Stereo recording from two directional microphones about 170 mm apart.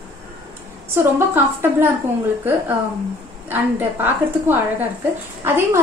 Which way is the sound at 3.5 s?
10° right (ahead or behind).